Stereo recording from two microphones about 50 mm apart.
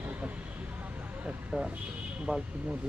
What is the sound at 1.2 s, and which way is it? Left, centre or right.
Speech, right.